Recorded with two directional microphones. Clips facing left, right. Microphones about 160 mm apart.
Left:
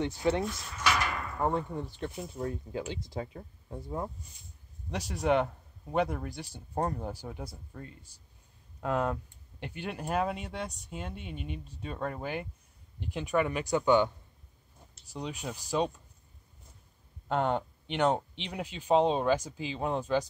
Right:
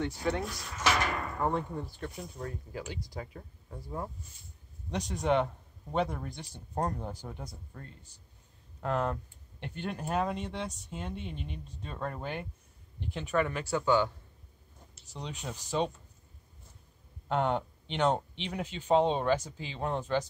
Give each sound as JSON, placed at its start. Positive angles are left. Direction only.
{"t": 0.0, "sound": "speech", "side_deg": 20}
{"t": 2.0, "sound": "speech", "side_deg": 25}
{"t": 4.9, "sound": "speech", "side_deg": 5}
{"t": 17.3, "sound": "speech", "side_deg": 5}